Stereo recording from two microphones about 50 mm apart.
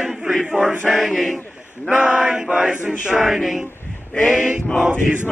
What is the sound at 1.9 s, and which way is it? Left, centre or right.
Chant, right.